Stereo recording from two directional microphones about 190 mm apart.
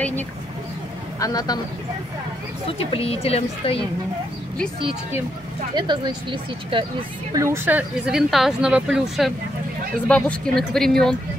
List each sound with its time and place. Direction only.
1.2 s speech: 20° left (ahead or behind)
2.9 s a woman's voice: 30° left (ahead or behind)
5.8 s speech: 25° right (ahead or behind); by 11.1 s centre (ahead or behind)